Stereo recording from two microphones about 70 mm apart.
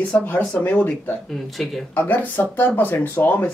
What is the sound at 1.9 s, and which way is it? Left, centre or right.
Speech, left.